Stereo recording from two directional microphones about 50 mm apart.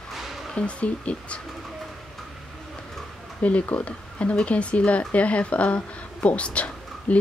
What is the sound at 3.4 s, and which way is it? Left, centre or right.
Speech, left.